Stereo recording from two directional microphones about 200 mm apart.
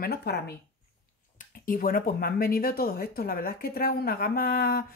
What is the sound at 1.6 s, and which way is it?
Speech, 45° left (ahead or behind).